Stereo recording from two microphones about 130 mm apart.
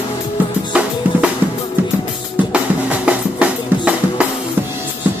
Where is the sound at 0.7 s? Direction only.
10° right (ahead or behind).